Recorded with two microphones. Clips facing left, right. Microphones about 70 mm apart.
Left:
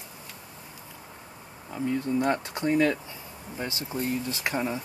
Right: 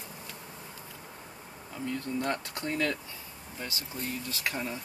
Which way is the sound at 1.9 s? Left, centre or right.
Centre.